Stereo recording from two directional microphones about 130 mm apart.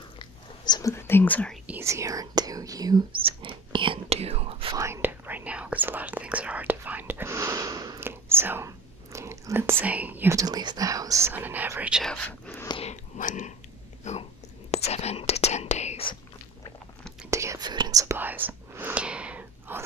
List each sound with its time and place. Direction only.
0.2 s a sound: 35° left (ahead or behind)
0.9 s speech: 20° left (ahead or behind)
1.7 s speech: 20° right (ahead or behind)
3.3 s speech: 40° right (ahead or behind)
4.7 s speech: 20° right (ahead or behind)
10.3 s speech: 30° right (ahead or behind)
11.9 s speech: centre (ahead or behind)
12.3 s speech: 15° left (ahead or behind)
12.8 s whispering: 80° left
14.0 s speech: 60° left (ahead or behind)
14.7 s whispering: 55° left (ahead or behind)
17.3 s whispering: 25° right (ahead or behind)
17.6 s whispering: 35° right (ahead or behind)
18.1 s whispering: 15° right (ahead or behind)